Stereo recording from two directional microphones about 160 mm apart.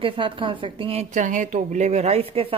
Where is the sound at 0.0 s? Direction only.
30° right (ahead or behind).